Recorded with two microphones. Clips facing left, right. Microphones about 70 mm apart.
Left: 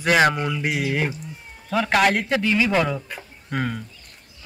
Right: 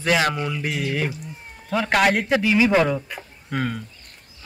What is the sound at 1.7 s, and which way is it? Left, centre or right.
Speech, centre.